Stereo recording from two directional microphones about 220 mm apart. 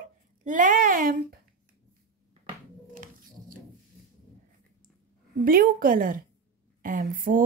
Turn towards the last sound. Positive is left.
turn(degrees=-40)  # may be behind; listen again after turning